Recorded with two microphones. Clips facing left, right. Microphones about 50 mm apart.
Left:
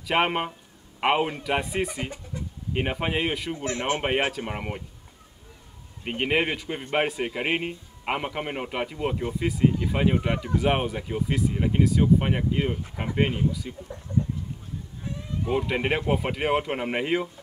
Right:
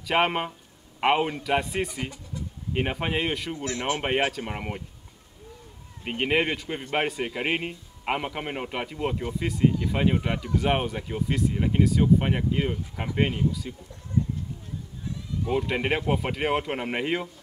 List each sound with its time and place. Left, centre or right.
0.0 s a man's voice: centre
3.5 s speech: left
4.3 s a man's voice: centre
6.0 s a man's voice: centre
15.4 s a man's voice: centre